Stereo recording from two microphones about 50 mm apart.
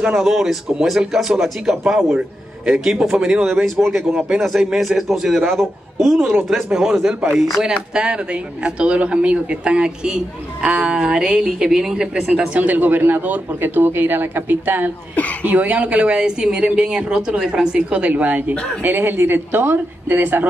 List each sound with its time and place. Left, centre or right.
0.1 s a man's voice: centre
7.9 s a woman's voice: centre
12.5 s a man's voice: right
15.4 s a man's voice: right